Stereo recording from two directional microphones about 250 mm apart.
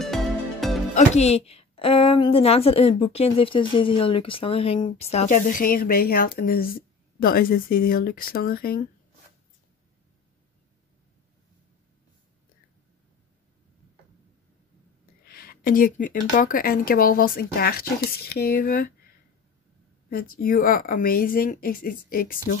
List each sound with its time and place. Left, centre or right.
0.0 s music: centre
0.9 s a woman's voice: left
15.2 s speech: left
20.1 s speech: left